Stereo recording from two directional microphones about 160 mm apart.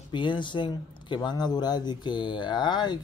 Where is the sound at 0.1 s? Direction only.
30° left (ahead or behind).